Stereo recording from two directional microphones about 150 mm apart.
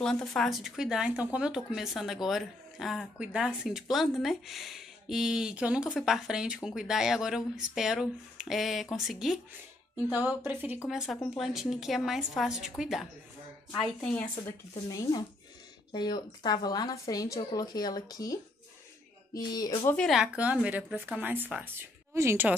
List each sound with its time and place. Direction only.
0.0 s speech: 5° left (ahead or behind)
10.0 s a woman's voice: 25° left (ahead or behind)
10.4 s a woman's voice: 10° right (ahead or behind)
14.0 s a woman's voice: 10° left (ahead or behind)
14.9 s a woman's voice: 25° left (ahead or behind)
20.1 s a woman's voice: 5° right (ahead or behind)